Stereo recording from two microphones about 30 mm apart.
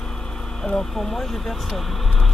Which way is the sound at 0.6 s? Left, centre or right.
Left.